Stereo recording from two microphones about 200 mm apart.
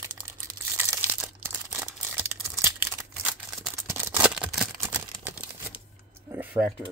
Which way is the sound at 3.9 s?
10° right (ahead or behind).